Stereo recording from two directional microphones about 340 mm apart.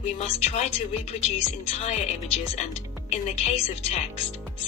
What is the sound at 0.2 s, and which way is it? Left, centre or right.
Speech, centre.